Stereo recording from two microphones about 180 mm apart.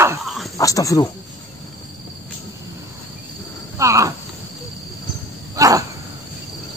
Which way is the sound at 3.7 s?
15° right (ahead or behind).